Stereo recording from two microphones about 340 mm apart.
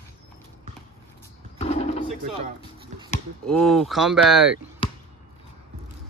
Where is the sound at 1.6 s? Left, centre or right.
Centre.